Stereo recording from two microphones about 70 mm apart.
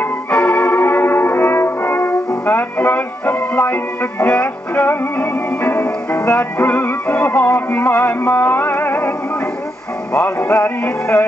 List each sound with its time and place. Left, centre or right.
0.3 s music: centre
4.3 s music: centre
10.1 s music: left